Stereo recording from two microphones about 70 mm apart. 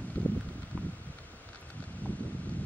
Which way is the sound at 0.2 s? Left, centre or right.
Left.